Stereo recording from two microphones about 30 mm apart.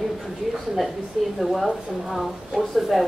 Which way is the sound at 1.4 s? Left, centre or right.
Centre.